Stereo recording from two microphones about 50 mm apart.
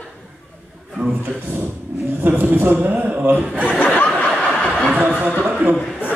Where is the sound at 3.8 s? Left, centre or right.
Left.